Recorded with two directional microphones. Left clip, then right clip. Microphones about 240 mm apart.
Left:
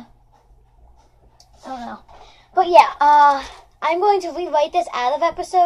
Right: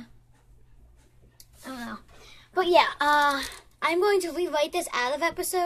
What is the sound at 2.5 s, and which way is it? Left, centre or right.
A woman's voice, right.